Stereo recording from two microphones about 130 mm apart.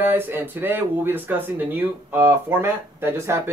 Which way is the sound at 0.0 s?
15° right (ahead or behind).